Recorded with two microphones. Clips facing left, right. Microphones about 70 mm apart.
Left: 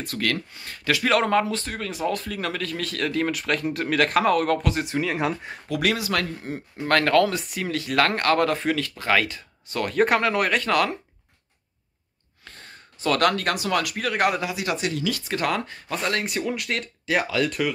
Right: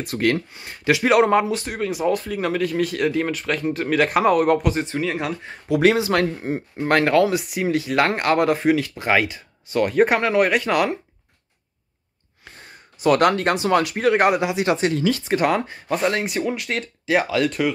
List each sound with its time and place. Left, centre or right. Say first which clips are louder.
0.0 s speech: right 6 dB; right
4.8 s speech: even; centre
5.7 s speech: right 7 dB; right
6.9 s speech: right 2 dB; centre
12.4 s speech: right 1 dB; centre